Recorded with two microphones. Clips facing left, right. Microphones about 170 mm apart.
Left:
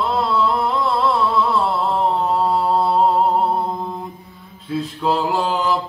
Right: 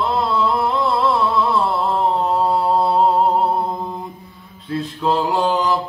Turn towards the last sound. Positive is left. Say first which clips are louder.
# right 2 dB
turn(degrees=0)  # may be behind; listen again after turning